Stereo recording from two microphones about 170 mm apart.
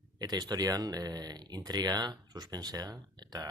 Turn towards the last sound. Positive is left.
turn(degrees=-25)  # may be behind; listen again after turning